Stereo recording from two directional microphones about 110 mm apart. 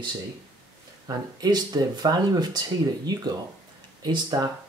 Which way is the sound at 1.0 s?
35° right (ahead or behind).